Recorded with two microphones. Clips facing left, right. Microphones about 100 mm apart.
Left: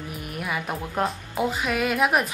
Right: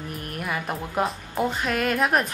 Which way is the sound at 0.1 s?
Centre (ahead or behind).